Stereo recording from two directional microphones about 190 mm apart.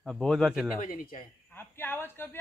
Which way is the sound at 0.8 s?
45° left (ahead or behind).